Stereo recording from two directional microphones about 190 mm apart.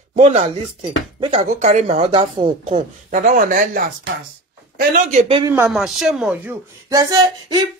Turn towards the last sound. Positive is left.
turn(degrees=-20)  # may be behind; listen again after turning